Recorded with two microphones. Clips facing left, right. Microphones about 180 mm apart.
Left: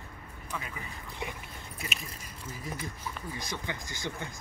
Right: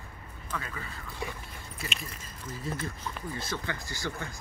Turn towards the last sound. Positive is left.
turn(degrees=20)  # may be behind; listen again after turning